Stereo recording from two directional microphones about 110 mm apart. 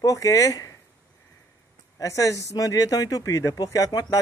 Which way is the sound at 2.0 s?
30° left (ahead or behind).